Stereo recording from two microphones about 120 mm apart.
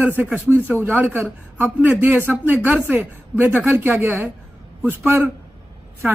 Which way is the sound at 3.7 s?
20° right (ahead or behind).